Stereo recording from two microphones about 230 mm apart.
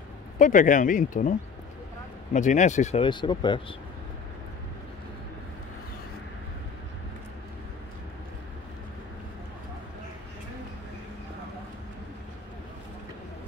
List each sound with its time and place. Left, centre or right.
0.4 s speech: left
2.3 s speech: left